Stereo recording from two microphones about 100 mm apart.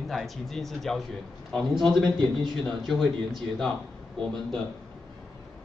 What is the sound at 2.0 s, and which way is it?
Speech, 50° right (ahead or behind).